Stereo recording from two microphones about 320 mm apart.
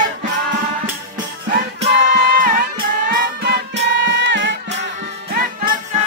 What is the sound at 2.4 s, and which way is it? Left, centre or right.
Music, right.